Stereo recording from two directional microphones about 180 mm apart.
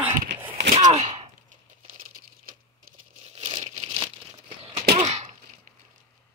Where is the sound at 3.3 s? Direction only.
30° right (ahead or behind).